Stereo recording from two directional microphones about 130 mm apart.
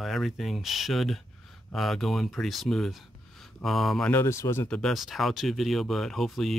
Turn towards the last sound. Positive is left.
turn(degrees=0)  # may be behind; listen again after turning